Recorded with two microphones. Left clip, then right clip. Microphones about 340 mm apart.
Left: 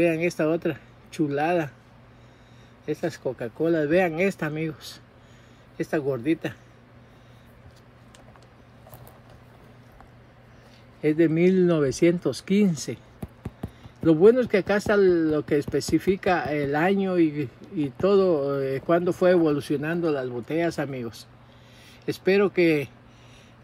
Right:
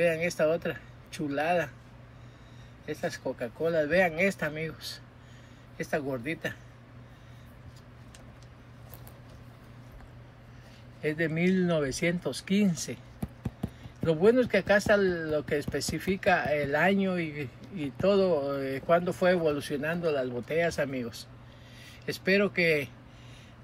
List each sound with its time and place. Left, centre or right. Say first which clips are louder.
0.0 s speech: left 3 dB; centre
2.8 s speech: left 5 dB; centre
11.0 s speech: left 8 dB; centre